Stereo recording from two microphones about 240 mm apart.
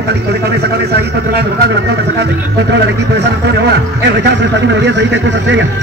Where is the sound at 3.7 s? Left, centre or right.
Right.